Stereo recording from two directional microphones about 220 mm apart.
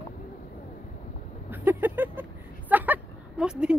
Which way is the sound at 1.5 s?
10° right (ahead or behind).